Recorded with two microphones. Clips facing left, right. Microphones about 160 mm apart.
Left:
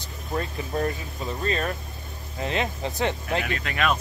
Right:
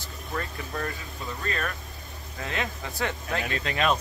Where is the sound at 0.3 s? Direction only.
25° left (ahead or behind).